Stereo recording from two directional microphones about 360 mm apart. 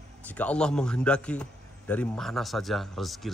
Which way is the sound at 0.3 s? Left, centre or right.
Centre.